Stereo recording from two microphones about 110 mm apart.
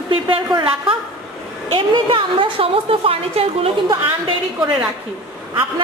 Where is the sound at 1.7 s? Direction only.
50° right (ahead or behind).